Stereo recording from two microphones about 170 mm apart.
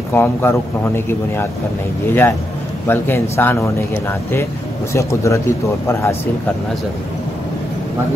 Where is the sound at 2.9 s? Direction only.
15° left (ahead or behind).